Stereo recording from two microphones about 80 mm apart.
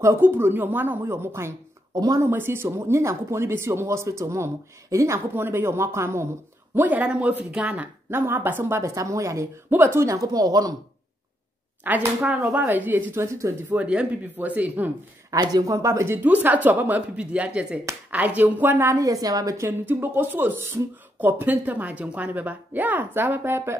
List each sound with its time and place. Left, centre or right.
0.0 s speech: right
2.0 s a woman's voice: right
2.2 s speech: right
6.7 s speech: right
8.1 s speech: right
9.7 s a woman's voice: right
11.9 s speech: right
13.2 s speech: right
13.7 s speech: centre
15.3 s speech: right
16.2 s speech: right
18.8 s a woman's voice: right
19.9 s speech: right